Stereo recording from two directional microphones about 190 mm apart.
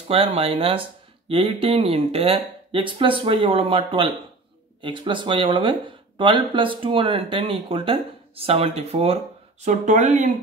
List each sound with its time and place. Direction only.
0.1 s speech: 30° right (ahead or behind)
4.8 s speech: 25° right (ahead or behind)